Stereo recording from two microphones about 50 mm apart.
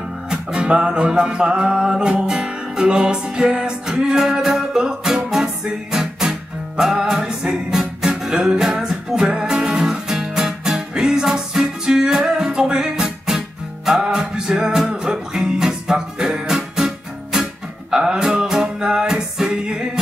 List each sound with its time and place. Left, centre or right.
0.3 s music: centre